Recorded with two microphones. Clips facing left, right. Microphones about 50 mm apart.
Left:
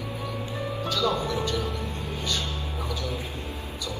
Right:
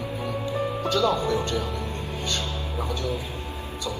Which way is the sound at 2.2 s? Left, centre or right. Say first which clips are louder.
Right 1 dB; right.